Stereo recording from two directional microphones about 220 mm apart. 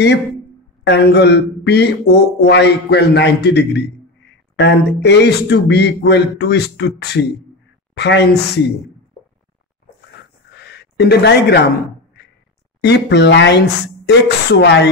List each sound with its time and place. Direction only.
0.8 s speech: 50° left (ahead or behind)
10.6 s a sound: 50° left (ahead or behind)
12.8 s speech: 50° left (ahead or behind)